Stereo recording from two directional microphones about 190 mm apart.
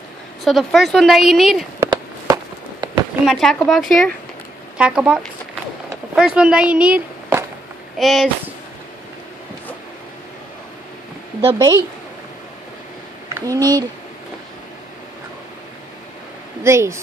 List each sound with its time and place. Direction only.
0.4 s speech: centre (ahead or behind)
1.8 s a sound: 15° right (ahead or behind)
3.3 s speech: centre (ahead or behind)
11.4 s speech: 20° right (ahead or behind)
16.6 s speech: 15° right (ahead or behind)